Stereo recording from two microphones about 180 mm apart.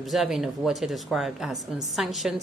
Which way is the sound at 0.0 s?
Centre (ahead or behind).